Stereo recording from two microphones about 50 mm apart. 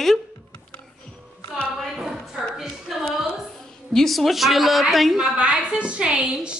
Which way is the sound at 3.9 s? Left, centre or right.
Centre.